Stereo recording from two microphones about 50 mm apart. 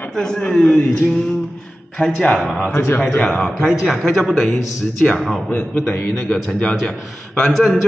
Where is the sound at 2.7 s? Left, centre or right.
Left.